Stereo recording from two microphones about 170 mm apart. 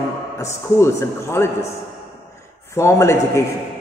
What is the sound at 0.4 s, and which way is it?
A man's voice, 15° left (ahead or behind).